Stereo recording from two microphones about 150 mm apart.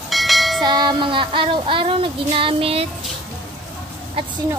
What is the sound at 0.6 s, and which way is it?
Child singing, 30° right (ahead or behind).